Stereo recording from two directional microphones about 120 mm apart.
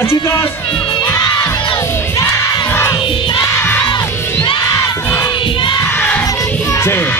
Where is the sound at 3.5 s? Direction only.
15° left (ahead or behind).